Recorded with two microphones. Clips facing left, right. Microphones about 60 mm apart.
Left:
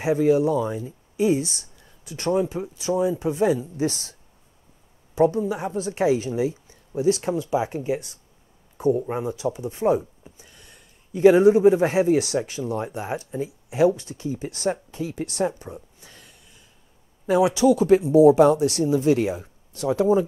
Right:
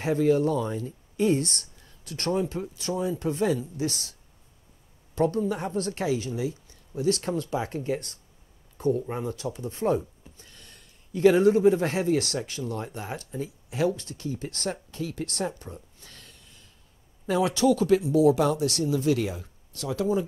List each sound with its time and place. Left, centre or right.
0.0 s speech: centre
3.7 s speech: left
5.1 s speech: centre
6.0 s speech: left
17.8 s speech: left